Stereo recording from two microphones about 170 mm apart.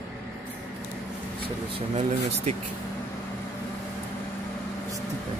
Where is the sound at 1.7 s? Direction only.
40° right (ahead or behind).